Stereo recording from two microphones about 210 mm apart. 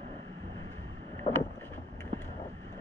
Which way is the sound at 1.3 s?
25° left (ahead or behind).